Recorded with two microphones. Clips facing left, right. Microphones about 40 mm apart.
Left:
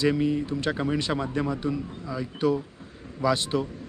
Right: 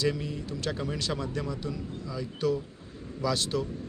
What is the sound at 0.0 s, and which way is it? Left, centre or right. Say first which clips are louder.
Speech: left 7 dB; left.